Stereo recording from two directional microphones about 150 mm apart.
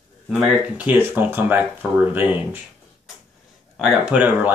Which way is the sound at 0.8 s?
15° right (ahead or behind).